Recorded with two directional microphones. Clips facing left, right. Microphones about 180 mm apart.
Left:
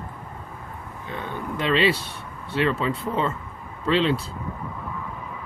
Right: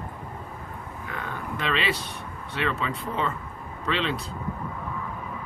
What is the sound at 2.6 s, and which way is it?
Speech, 35° left (ahead or behind).